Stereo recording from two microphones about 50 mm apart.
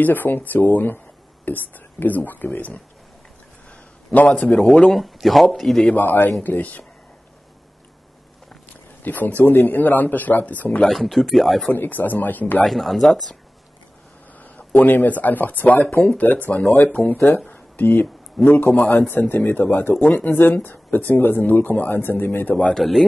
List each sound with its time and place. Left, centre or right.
0.0 s speech: left
4.6 s speech: centre
4.9 s speech: centre
5.9 s speech: left
9.0 s speech: left
10.9 s speech: centre
11.7 s speech: left
12.6 s speech: centre
14.4 s speech: left
17.5 s a sound: left
18.4 s speech: left
20.5 s speech: left
22.8 s speech: centre